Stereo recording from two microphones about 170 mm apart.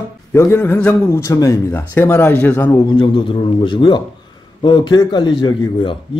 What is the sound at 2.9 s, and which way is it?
A man's voice, 30° left (ahead or behind).